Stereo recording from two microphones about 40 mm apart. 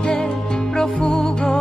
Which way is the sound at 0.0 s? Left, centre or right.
Centre.